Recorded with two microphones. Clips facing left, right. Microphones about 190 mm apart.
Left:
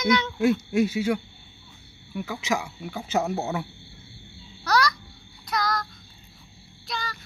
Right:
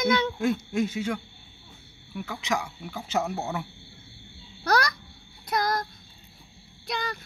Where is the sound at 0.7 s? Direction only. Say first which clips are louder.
Left 4 dB; 5° left (ahead or behind).